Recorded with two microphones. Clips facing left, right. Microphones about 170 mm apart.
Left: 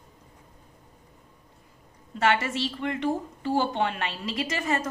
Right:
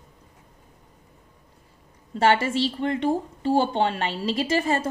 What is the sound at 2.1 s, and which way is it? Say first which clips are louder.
A woman's voice: right 4 dB; 30° right (ahead or behind).